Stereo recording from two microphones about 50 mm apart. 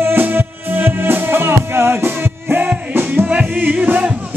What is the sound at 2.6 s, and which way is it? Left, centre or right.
Music, right.